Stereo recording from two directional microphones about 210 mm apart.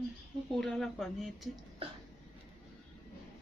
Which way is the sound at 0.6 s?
Centre (ahead or behind).